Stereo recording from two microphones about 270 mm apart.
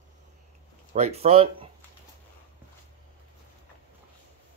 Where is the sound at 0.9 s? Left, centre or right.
Right.